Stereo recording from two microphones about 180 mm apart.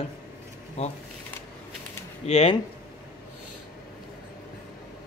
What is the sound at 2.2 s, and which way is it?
Speech, 35° left (ahead or behind).